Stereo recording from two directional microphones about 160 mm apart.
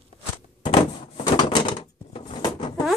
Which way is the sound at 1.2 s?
25° left (ahead or behind).